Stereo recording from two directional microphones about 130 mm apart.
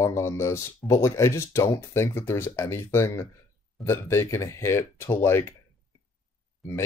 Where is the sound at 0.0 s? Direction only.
20° left (ahead or behind).